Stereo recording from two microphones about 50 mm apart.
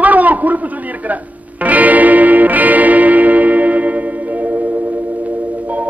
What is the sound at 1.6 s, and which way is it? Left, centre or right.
Music, right.